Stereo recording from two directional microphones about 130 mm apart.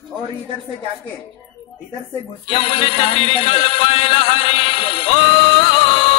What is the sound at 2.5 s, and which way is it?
Music, 45° left (ahead or behind).